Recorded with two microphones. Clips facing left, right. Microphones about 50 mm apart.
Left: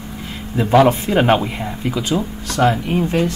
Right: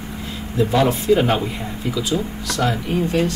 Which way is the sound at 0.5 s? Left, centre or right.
Left.